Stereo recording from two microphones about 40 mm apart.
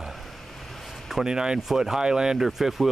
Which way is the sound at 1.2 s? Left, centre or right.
Centre.